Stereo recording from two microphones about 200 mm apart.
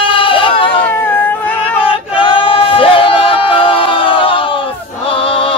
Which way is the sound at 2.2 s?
25° left (ahead or behind).